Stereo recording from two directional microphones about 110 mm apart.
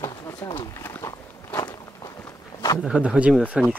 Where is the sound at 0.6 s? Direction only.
20° left (ahead or behind).